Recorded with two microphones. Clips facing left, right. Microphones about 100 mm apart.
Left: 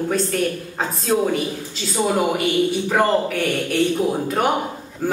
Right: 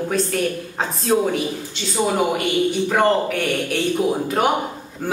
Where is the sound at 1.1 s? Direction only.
5° right (ahead or behind).